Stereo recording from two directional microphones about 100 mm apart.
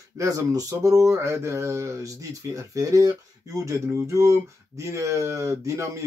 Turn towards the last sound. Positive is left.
turn(degrees=-30)  # may be behind; listen again after turning